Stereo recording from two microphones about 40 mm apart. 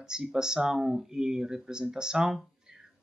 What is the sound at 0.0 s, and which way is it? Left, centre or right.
Speech, centre.